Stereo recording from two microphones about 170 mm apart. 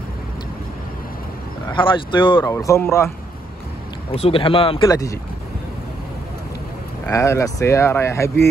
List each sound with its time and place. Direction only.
1.7 s speech: 30° left (ahead or behind)
2.4 s speech: 15° left (ahead or behind)
4.1 s speech: 35° left (ahead or behind)
7.1 s speech: 15° left (ahead or behind)